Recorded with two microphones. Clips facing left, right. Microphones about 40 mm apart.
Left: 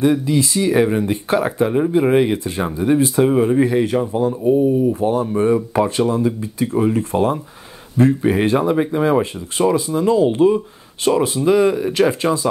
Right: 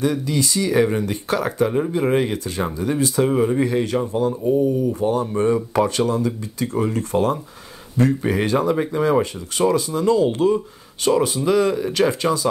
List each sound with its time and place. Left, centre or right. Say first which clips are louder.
0.0 s speech: left 5 dB; left
1.0 s speech: left 4 dB; left
3.3 s speech: left 4 dB; centre
3.7 s speech: left 3 dB; left